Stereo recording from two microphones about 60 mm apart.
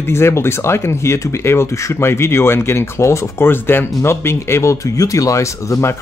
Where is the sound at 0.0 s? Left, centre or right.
Left.